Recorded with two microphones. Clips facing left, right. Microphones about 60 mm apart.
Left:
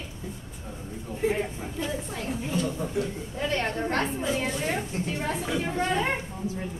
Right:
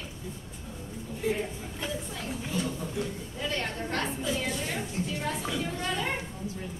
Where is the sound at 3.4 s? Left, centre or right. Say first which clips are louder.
Left 5 dB; left.